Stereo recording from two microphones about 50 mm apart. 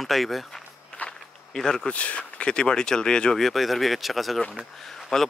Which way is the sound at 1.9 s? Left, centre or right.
Left.